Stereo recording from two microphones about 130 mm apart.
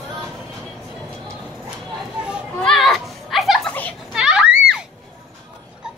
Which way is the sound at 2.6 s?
5° left (ahead or behind).